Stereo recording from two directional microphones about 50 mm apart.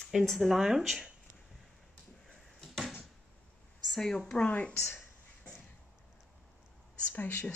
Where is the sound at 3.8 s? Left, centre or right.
Centre.